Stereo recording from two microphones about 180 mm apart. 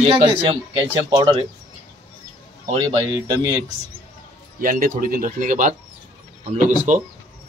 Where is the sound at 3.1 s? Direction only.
20° right (ahead or behind).